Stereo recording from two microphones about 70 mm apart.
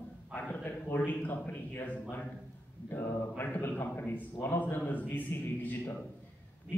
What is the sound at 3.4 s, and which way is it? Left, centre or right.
A man's voice, left.